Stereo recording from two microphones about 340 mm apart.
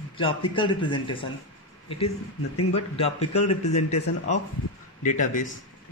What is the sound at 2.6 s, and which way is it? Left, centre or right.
Speech, left.